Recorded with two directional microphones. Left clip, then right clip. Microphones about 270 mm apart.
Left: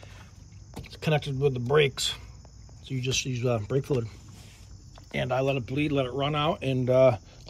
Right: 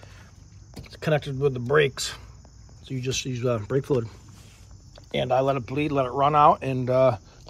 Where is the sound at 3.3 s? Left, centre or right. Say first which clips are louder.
Right 5 dB; left.